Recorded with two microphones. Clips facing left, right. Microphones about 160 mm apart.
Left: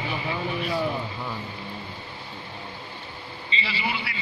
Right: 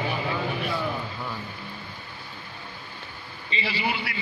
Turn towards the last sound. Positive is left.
turn(degrees=-45)  # may be behind; listen again after turning